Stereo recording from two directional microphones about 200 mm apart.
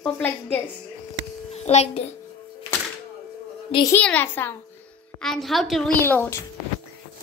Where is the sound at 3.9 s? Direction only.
10° left (ahead or behind).